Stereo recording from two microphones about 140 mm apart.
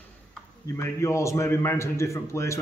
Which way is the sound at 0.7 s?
20° left (ahead or behind).